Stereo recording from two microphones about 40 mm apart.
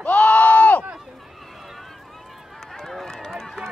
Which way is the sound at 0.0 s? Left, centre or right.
Left.